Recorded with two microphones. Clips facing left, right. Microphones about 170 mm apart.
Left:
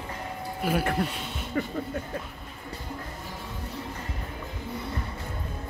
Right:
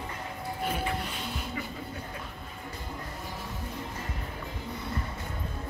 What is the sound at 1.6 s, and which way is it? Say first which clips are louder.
Speech: left 14 dB; 50° left (ahead or behind).